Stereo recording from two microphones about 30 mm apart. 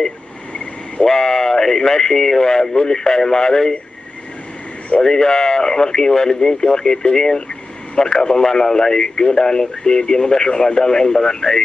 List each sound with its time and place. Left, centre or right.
1.0 s speech: centre
5.0 s speech: centre